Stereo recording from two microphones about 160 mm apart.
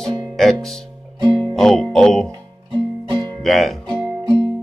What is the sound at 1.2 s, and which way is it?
Music, 25° right (ahead or behind).